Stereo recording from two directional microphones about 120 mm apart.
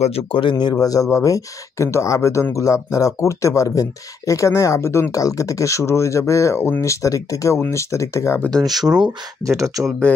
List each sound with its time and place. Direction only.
0.0 s speech: 50° left (ahead or behind)
0.8 s speech: 30° left (ahead or behind)
8.4 s speech: 5° left (ahead or behind)
9.4 s speech: 25° right (ahead or behind)